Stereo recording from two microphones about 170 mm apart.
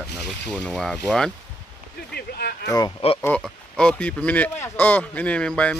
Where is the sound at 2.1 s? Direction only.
70° left (ahead or behind).